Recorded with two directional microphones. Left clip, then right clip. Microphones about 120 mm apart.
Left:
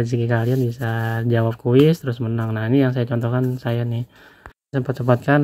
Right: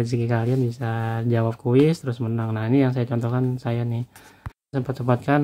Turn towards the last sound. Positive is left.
turn(degrees=40)  # may be behind; listen again after turning